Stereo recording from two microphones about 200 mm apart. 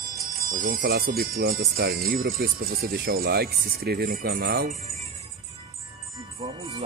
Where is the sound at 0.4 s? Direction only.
45° right (ahead or behind).